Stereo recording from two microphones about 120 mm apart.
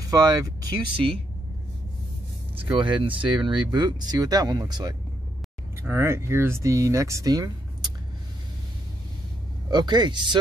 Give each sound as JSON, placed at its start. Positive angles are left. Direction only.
{"t": 0.1, "sound": "speech", "side_deg": -30}
{"t": 2.8, "sound": "speech", "side_deg": -45}
{"t": 5.8, "sound": "speech", "side_deg": -20}
{"t": 9.7, "sound": "speech", "side_deg": -35}